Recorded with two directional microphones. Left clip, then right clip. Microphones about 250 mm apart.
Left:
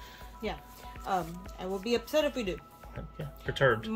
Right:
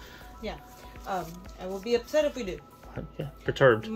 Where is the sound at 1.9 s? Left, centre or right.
Left.